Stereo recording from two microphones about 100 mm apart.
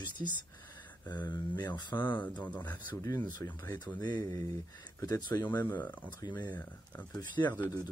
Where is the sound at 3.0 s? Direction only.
40° left (ahead or behind).